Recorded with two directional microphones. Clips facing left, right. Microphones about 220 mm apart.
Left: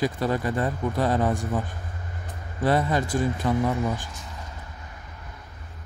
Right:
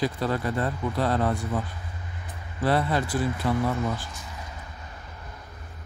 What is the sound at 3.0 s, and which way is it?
Speech, 45° left (ahead or behind).